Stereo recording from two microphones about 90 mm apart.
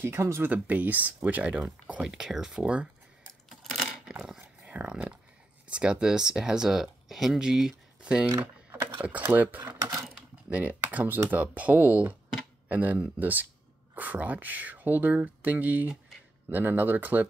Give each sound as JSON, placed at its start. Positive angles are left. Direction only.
{"t": 0.0, "sound": "speech", "side_deg": -30}
{"t": 4.1, "sound": "dog", "side_deg": -5}
{"t": 5.7, "sound": "speech", "side_deg": -10}
{"t": 9.2, "sound": "speech", "side_deg": -20}
{"t": 9.8, "sound": "typewriter", "side_deg": -40}
{"t": 10.5, "sound": "speech", "side_deg": -15}